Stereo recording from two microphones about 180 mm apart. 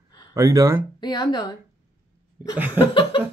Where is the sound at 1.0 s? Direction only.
25° left (ahead or behind).